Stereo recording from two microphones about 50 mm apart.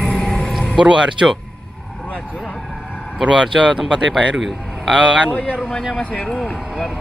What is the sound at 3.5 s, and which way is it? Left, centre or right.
A man's voice, centre.